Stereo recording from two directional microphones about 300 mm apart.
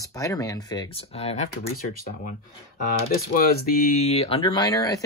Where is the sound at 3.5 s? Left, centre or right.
Left; by 5.0 s centre.